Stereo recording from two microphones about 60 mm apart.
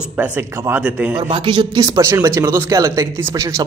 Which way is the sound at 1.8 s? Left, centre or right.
Right.